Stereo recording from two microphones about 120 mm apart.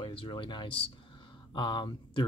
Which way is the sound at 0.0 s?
45° left (ahead or behind).